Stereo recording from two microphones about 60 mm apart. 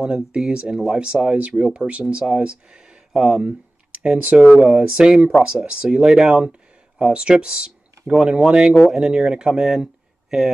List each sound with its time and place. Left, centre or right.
0.0 s speech: centre